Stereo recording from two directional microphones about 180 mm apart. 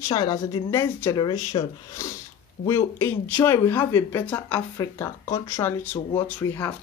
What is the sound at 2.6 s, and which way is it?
Speech, 15° left (ahead or behind).